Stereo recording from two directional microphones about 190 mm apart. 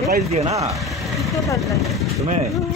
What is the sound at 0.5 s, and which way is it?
Speech, 15° right (ahead or behind).